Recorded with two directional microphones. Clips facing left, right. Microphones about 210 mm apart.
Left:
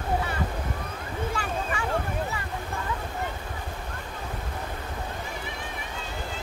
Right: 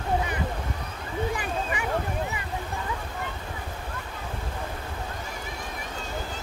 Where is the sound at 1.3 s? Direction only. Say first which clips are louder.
Right 1 dB; 15° right (ahead or behind).